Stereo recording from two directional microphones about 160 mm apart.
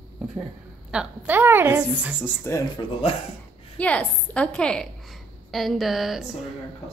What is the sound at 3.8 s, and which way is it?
A woman's voice, 10° left (ahead or behind).